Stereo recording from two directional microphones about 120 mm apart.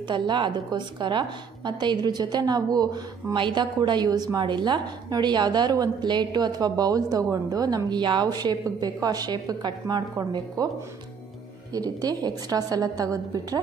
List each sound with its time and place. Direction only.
0.1 s a woman's voice: 40° right (ahead or behind)
11.7 s a woman's voice: 30° right (ahead or behind)